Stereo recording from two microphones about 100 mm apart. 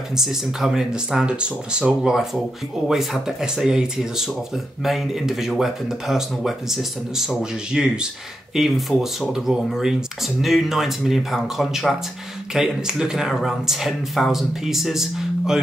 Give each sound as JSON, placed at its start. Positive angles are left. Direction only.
{"t": 0.1, "sound": "speech", "side_deg": -5}